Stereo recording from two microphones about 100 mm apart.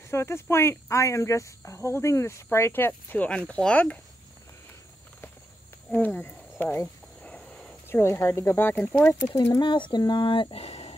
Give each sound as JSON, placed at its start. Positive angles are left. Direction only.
{"t": 0.1, "sound": "speech", "side_deg": 25}
{"t": 3.1, "sound": "speech", "side_deg": 15}
{"t": 5.9, "sound": "speech", "side_deg": 15}
{"t": 7.2, "sound": "a sound", "side_deg": 10}
{"t": 7.9, "sound": "speech", "side_deg": 25}
{"t": 9.2, "sound": "speech", "side_deg": 35}
{"t": 9.6, "sound": "speech", "side_deg": 55}